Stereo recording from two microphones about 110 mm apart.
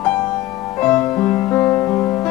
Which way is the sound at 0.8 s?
15° left (ahead or behind).